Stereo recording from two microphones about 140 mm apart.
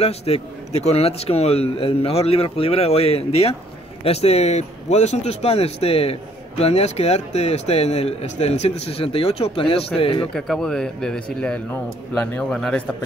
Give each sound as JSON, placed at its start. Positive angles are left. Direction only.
{"t": 0.0, "sound": "a man's voice", "side_deg": 45}
{"t": 10.3, "sound": "a man's voice", "side_deg": 5}